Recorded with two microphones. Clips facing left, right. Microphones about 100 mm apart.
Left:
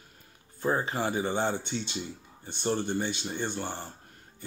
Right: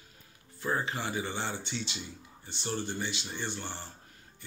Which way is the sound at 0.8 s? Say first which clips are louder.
Left 5 dB; 40° left (ahead or behind).